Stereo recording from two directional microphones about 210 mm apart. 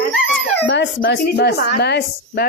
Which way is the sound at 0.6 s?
60° left (ahead or behind).